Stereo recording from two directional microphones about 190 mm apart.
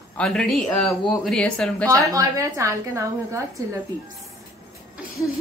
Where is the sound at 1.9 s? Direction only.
15° right (ahead or behind).